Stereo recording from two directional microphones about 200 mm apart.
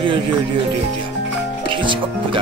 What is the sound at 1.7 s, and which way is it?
Speech, 25° right (ahead or behind).